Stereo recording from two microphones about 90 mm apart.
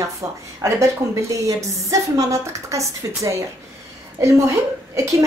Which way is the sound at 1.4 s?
35° right (ahead or behind).